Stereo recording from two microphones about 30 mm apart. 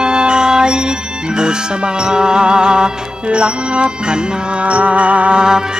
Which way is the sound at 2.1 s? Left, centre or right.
Right.